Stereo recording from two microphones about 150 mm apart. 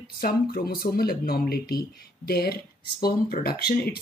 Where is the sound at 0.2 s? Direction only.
85° left.